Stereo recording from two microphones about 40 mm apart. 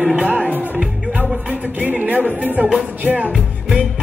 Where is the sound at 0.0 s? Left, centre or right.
Centre.